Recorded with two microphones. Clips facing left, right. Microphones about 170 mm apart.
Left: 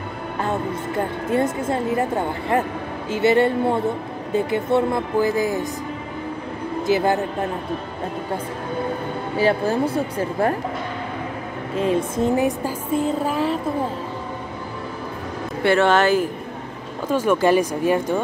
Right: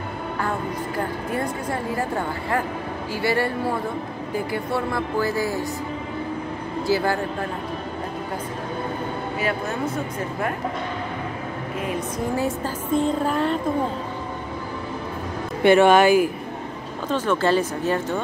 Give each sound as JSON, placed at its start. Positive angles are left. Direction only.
{"t": 0.4, "sound": "a woman's voice", "side_deg": 25}
{"t": 6.9, "sound": "speech", "side_deg": 20}
{"t": 9.4, "sound": "speech", "side_deg": 30}
{"t": 11.8, "sound": "speech", "side_deg": 25}
{"t": 15.6, "sound": "speech", "side_deg": -15}
{"t": 17.1, "sound": "speech", "side_deg": 10}